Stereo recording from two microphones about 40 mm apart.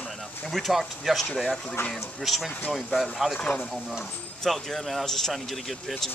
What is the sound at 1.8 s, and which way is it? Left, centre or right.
Speech, left.